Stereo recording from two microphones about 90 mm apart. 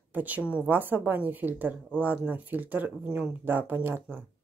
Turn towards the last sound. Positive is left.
turn(degrees=-20)  # may be behind; listen again after turning